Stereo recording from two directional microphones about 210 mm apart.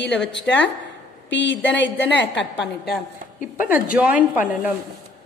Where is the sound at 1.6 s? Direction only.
10° left (ahead or behind).